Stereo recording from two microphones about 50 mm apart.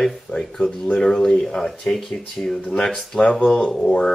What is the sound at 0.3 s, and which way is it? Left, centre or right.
Speech, centre.